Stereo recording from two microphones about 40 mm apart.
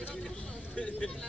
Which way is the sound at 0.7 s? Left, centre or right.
Left.